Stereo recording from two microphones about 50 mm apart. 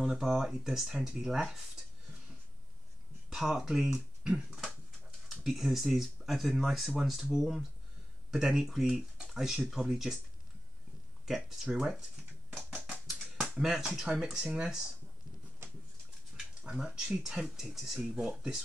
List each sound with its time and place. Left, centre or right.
0.0 s speech: centre
3.3 s speech: centre
11.2 s speech: centre
12.5 s a sound: centre
13.0 s finger snapping: centre
13.6 s speech: centre
16.6 s speech: centre